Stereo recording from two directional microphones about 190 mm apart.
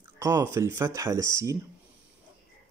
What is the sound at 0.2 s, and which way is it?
Speech, 15° right (ahead or behind).